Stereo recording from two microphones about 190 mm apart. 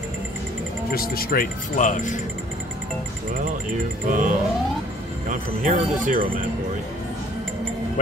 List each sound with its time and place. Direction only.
0.9 s speech: 50° left (ahead or behind)
4.1 s speech: 45° right (ahead or behind)